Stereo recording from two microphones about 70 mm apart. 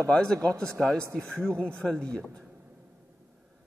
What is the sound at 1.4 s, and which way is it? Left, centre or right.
Speech, centre.